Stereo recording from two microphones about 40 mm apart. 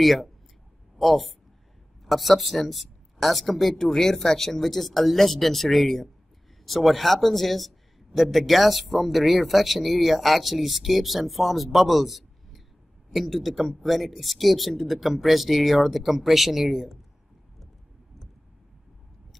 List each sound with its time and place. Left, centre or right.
0.0 s speech: centre